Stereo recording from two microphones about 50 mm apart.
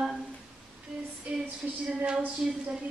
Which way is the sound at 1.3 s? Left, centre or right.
Right.